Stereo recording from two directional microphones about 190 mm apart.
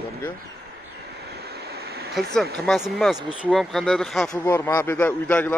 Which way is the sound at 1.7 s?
55° right (ahead or behind).